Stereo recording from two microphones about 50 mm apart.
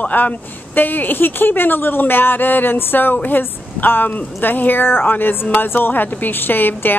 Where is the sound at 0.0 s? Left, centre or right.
Left.